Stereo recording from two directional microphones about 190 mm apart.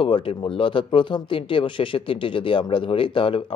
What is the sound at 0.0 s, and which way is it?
Speech, 30° left (ahead or behind).